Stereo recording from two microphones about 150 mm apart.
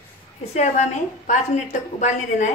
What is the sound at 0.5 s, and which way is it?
A woman's voice, 50° left (ahead or behind).